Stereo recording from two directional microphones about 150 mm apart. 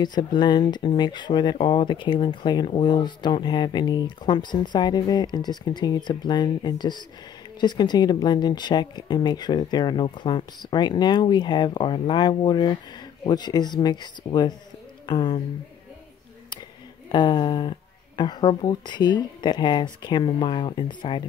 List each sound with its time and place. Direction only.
0.0 s speech: 30° left (ahead or behind)
17.1 s speech: 30° left (ahead or behind)